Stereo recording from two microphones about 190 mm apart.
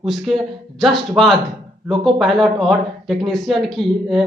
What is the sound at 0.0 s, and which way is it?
Speech, centre (ahead or behind).